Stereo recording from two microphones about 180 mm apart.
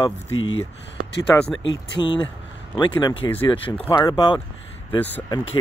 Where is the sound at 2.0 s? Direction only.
25° left (ahead or behind).